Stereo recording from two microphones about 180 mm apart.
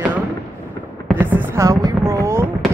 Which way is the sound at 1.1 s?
10° right (ahead or behind).